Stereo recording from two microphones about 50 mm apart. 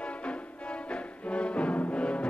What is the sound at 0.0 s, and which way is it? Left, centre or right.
Music, left.